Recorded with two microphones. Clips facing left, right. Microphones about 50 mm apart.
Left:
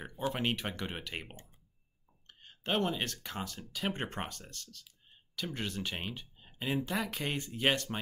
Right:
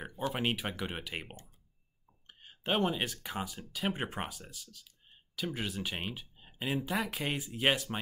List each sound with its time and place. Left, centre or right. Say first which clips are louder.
0.3 s speech: even; centre